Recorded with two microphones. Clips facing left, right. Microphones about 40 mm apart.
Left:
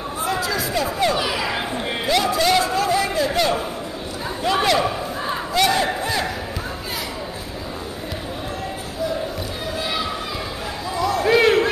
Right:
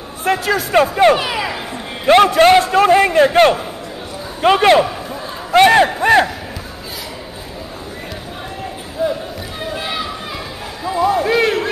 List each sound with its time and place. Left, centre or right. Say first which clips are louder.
0.2 s a man's voice: right 7 dB; right
1.2 s speech: right 3 dB; right
2.0 s a man's voice: right 10 dB; right
9.0 s basketball bounce: right 6 dB; right
10.9 s a sound: right 7 dB; right
11.2 s a sound: even; centre